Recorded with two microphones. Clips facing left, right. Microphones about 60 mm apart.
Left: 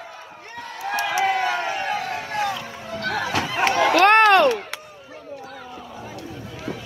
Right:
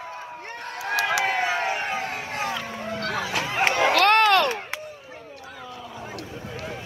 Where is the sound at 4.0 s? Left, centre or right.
Left.